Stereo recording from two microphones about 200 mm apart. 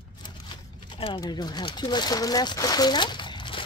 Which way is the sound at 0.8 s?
25° left (ahead or behind).